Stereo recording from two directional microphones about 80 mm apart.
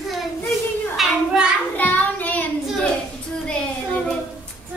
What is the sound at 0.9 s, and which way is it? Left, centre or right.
Child singing, centre.